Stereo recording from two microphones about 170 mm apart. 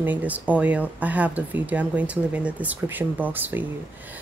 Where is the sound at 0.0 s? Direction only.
10° right (ahead or behind).